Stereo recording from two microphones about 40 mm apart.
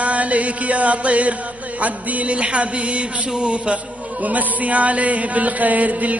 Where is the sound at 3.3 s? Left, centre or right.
Centre.